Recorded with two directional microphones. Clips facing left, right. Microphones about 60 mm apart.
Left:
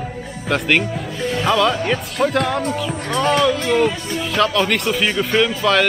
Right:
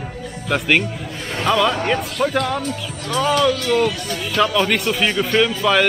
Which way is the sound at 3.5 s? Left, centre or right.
Left.